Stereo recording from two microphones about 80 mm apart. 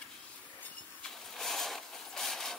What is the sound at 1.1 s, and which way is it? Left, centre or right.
Vehicle, centre.